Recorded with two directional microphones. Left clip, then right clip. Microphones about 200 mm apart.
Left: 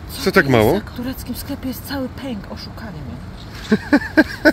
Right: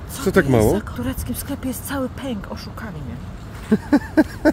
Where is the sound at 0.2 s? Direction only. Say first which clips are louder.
Left 3 dB; 10° right (ahead or behind).